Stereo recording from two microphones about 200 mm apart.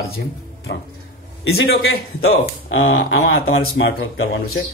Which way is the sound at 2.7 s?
75° left (ahead or behind).